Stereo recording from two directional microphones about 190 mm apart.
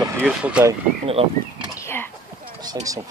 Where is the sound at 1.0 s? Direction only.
30° right (ahead or behind).